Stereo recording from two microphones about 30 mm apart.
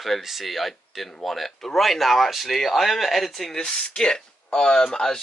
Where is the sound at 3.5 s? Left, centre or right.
Left.